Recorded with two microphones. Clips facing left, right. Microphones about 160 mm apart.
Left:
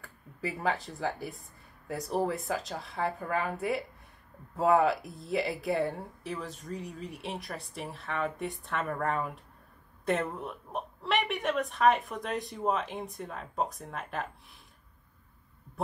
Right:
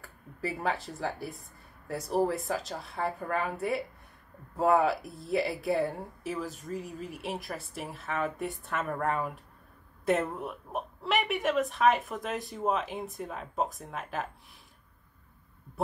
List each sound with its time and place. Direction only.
0.0 s speech: centre (ahead or behind)